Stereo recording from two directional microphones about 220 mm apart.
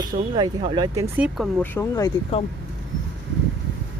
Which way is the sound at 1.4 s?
Centre (ahead or behind).